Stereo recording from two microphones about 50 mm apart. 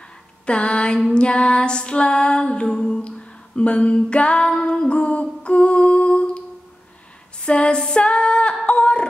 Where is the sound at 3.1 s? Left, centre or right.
Left.